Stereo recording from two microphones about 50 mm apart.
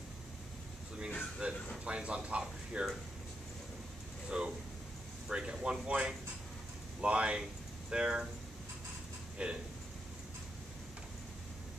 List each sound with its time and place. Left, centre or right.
1.4 s speech: right
4.3 s speech: right
9.4 s speech: right